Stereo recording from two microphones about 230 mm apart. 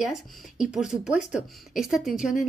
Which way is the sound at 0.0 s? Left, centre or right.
Centre.